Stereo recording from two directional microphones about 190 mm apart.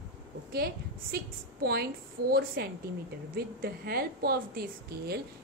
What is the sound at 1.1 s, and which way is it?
A woman's voice, 55° right (ahead or behind).